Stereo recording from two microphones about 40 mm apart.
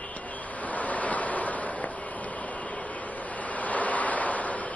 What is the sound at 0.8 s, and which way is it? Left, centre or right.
Waves, left.